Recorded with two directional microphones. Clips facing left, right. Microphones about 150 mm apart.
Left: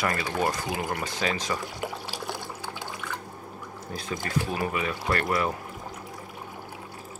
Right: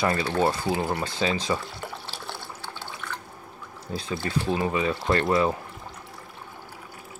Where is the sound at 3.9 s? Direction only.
25° right (ahead or behind).